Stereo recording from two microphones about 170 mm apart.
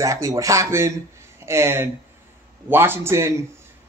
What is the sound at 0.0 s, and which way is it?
A man's voice, 20° right (ahead or behind).